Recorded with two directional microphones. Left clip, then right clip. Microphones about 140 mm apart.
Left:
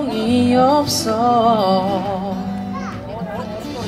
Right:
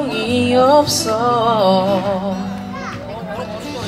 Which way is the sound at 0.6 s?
20° left (ahead or behind).